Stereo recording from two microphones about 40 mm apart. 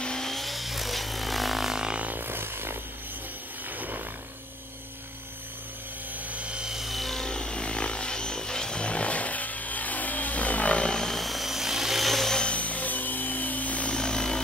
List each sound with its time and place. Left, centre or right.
0.0 s vehicle: centre
0.3 s vehicle: centre
2.1 s a sound: right
3.7 s vehicle: right
6.2 s helicopter: right
6.6 s wood: centre
6.9 s music: centre
7.2 s chainsaw: left
10.8 s helicopter: centre
11.1 s helicopter: centre
12.5 s a sound: left
13.9 s helicopter: centre